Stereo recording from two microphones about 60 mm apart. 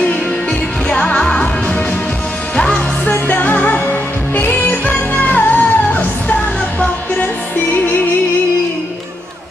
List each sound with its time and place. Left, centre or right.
0.5 s music: centre
3.1 s music: left